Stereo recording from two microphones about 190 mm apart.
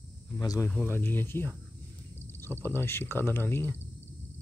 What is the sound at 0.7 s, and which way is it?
Speech, 10° left (ahead or behind).